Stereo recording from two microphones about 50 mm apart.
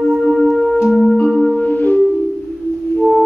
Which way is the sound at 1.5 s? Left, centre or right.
Left.